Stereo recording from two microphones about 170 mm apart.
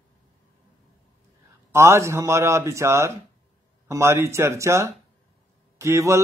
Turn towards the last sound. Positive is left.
turn(degrees=-15)  # may be behind; listen again after turning